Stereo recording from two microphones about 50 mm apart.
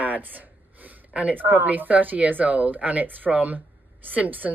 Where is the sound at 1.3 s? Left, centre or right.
Right.